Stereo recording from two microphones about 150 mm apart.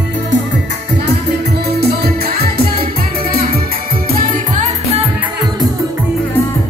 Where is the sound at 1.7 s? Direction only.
90° right.